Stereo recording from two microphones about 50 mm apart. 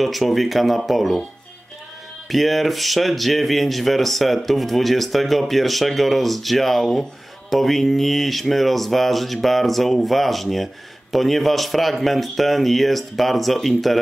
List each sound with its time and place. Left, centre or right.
0.0 s speech: centre
2.2 s speech: centre